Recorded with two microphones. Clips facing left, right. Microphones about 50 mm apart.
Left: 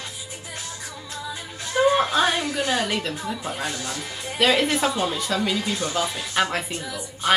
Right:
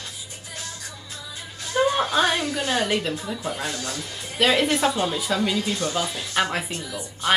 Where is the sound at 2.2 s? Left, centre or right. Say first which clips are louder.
Even; centre.